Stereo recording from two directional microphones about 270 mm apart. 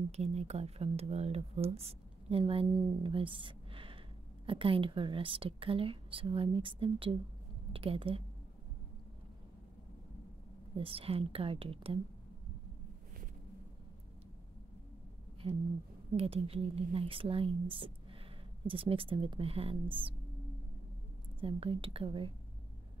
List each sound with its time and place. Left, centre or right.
0.1 s speech: right
10.8 s speech: right
16.2 s speech: right
21.4 s speech: centre